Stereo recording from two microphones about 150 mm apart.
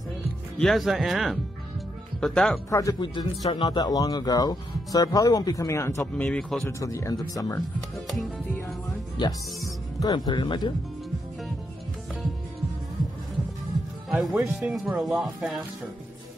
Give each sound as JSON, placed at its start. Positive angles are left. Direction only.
{"t": 0.6, "sound": "speech", "side_deg": 0}
{"t": 2.7, "sound": "speech", "side_deg": 25}
{"t": 6.2, "sound": "speech", "side_deg": 5}
{"t": 6.8, "sound": "speech", "side_deg": 20}
{"t": 8.1, "sound": "speech", "side_deg": 0}
{"t": 9.9, "sound": "speech", "side_deg": 25}
{"t": 14.1, "sound": "speech", "side_deg": -10}